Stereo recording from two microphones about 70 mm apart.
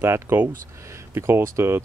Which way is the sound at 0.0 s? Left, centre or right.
Right.